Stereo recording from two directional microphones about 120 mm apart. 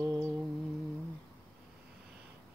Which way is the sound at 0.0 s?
25° right (ahead or behind).